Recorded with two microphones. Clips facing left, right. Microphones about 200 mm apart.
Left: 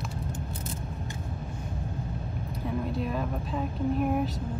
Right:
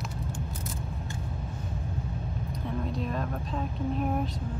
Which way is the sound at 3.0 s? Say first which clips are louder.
Left 1 dB; 5° left (ahead or behind).